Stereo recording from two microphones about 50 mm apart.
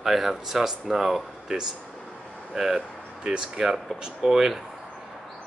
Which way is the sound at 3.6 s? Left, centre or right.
Centre.